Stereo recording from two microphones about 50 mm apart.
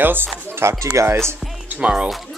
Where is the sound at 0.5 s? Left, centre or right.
Right.